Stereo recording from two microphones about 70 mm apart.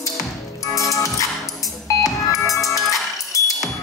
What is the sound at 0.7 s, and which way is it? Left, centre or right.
Music, left.